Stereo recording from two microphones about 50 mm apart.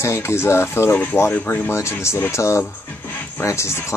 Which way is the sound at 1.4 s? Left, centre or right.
Left.